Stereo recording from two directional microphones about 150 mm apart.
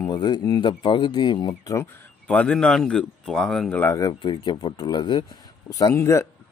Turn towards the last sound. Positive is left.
turn(degrees=20)  # may be behind; listen again after turning